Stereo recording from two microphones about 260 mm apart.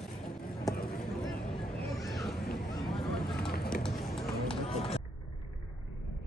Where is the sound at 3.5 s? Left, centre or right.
Left.